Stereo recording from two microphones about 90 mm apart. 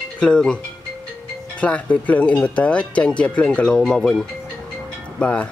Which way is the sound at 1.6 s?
15° left (ahead or behind).